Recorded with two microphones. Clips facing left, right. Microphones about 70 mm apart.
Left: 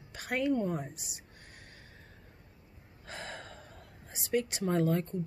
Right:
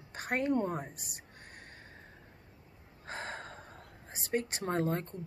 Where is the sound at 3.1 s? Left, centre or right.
Right.